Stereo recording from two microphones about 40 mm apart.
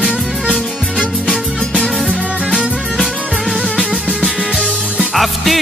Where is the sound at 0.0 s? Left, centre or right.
Centre.